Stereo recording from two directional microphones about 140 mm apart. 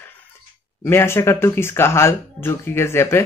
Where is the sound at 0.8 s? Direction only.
15° left (ahead or behind).